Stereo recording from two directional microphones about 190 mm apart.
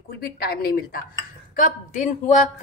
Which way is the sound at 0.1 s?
50° left (ahead or behind).